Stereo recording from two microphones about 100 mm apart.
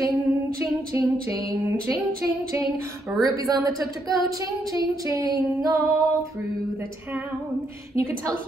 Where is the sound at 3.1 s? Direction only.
25° right (ahead or behind).